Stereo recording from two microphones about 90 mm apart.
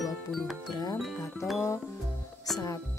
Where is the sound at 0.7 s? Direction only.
45° left (ahead or behind).